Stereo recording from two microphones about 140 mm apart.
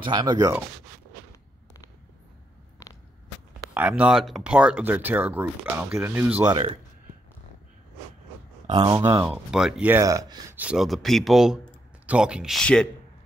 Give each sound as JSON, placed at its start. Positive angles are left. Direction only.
{"t": 0.0, "sound": "speech", "side_deg": -30}
{"t": 3.7, "sound": "speech", "side_deg": -10}
{"t": 8.6, "sound": "speech", "side_deg": -35}
{"t": 9.2, "sound": "speech", "side_deg": -5}
{"t": 9.9, "sound": "speech", "side_deg": -25}
{"t": 10.6, "sound": "speech", "side_deg": -5}